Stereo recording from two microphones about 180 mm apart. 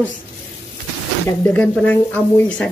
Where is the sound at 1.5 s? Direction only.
5° left (ahead or behind).